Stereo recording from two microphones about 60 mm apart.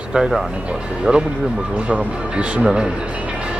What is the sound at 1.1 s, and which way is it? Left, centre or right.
Speech, centre.